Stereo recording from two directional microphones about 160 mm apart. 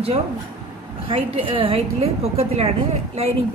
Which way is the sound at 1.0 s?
35° right (ahead or behind).